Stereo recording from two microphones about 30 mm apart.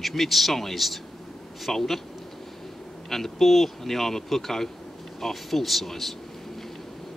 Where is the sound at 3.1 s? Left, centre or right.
Centre.